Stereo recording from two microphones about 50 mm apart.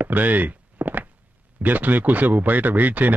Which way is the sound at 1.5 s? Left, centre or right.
Right.